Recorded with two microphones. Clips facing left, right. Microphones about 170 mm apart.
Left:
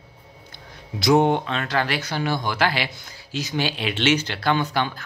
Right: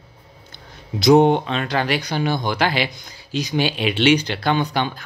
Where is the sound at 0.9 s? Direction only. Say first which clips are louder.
Right 4 dB; 20° right (ahead or behind).